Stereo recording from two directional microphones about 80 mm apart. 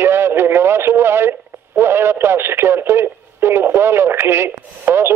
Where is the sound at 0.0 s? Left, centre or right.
Right.